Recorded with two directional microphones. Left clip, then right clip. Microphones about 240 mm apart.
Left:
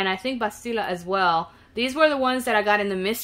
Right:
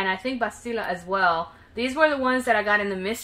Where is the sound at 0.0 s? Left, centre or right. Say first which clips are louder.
Left 1 dB; left.